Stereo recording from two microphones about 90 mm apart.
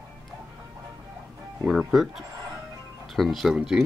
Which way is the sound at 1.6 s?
Centre (ahead or behind).